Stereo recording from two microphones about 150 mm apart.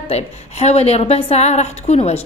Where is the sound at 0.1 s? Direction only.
45° left (ahead or behind).